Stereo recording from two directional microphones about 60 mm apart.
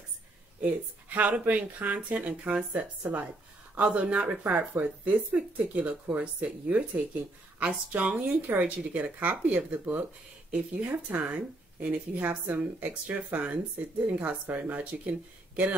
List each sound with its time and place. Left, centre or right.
0.7 s speech: right